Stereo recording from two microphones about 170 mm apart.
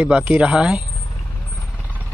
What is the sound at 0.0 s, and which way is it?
Speech, 10° right (ahead or behind).